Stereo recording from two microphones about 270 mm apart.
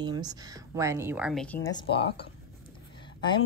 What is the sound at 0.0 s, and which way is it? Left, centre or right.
A woman's voice, centre.